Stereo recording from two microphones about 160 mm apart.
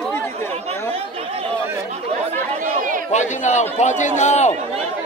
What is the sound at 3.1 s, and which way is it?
A man's voice, 50° left (ahead or behind).